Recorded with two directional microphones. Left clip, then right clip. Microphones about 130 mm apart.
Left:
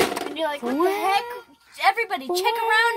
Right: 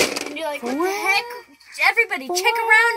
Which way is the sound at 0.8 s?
20° left (ahead or behind).